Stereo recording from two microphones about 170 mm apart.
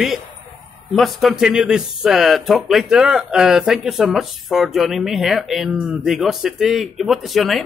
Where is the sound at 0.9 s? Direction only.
Centre (ahead or behind).